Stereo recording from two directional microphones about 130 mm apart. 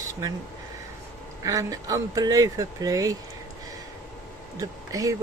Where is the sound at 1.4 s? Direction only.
25° right (ahead or behind).